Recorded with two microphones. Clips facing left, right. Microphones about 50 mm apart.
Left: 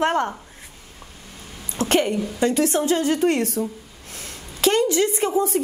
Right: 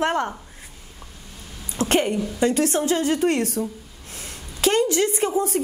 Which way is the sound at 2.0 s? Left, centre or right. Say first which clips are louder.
Even; centre.